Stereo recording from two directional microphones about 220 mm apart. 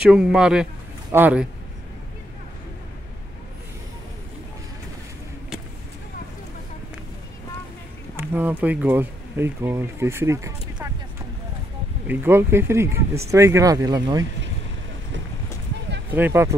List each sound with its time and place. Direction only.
0.0 s speech: 5° right (ahead or behind)
8.2 s speech: 10° right (ahead or behind)
12.1 s speech: 10° right (ahead or behind)
16.2 s speech: 10° right (ahead or behind)